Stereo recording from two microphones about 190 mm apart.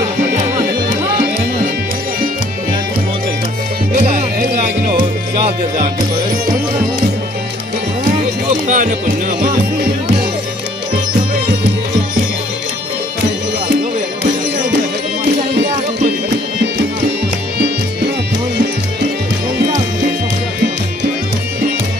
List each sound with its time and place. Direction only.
3.9 s music: 40° right (ahead or behind)
8.6 s music: 45° right (ahead or behind)